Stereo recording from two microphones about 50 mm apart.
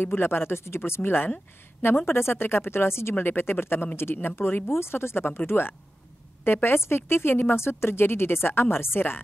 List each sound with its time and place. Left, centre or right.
0.0 s speech: left